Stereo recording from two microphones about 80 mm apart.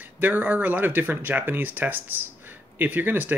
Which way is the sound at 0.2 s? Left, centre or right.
Right.